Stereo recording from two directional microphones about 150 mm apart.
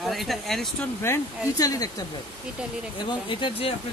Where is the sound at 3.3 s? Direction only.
30° left (ahead or behind).